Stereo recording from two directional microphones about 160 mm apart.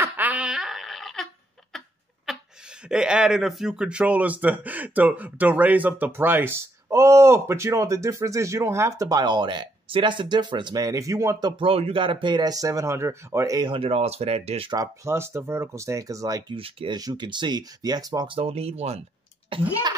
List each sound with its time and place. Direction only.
0.0 s a sound: 10° right (ahead or behind)
2.9 s speech: 5° right (ahead or behind); by 14.7 s 40° right (ahead or behind)
14.7 s speech: 20° right (ahead or behind)
16.5 s speech: 35° right (ahead or behind)
19.5 s speech: 25° right (ahead or behind)